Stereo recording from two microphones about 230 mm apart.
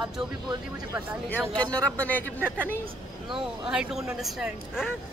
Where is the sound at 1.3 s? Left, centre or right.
Centre.